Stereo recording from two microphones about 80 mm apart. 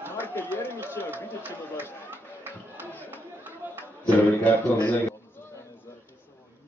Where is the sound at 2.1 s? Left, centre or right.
Right.